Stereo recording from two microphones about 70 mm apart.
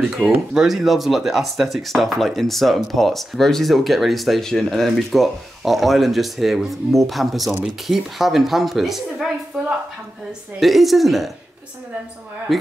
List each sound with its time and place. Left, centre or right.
0.1 s speech: centre
10.6 s speech: centre
12.5 s speech: centre